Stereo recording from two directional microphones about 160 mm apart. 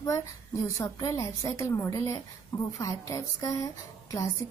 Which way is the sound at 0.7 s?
20° left (ahead or behind).